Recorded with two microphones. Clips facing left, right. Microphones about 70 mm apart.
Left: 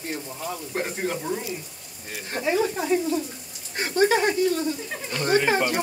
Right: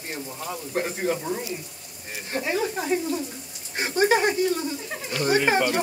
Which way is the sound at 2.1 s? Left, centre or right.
Centre.